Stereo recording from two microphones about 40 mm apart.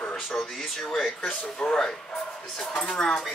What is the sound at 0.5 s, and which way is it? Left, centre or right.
Speech, centre.